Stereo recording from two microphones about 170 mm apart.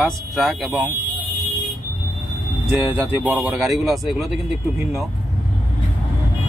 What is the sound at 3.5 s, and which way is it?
Speech, centre (ahead or behind).